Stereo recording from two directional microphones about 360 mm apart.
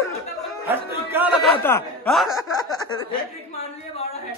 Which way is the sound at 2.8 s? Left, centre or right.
Centre.